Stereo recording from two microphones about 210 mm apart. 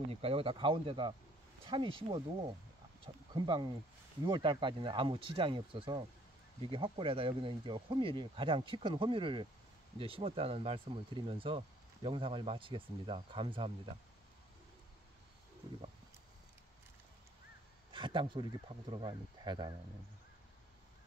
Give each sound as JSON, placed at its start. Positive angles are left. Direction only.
{"t": 0.1, "sound": "speech", "side_deg": -25}
{"t": 17.9, "sound": "speech", "side_deg": -25}